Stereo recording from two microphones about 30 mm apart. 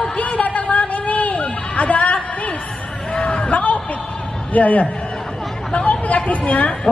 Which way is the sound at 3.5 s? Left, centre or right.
Left.